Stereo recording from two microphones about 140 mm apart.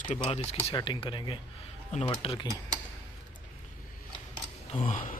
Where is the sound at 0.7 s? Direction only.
35° left (ahead or behind).